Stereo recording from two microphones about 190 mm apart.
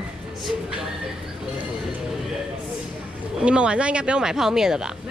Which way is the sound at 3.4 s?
5° right (ahead or behind).